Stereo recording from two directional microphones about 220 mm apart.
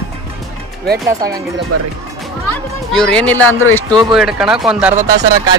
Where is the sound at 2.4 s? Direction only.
5° left (ahead or behind).